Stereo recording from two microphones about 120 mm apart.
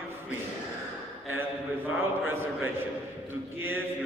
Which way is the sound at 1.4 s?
15° right (ahead or behind).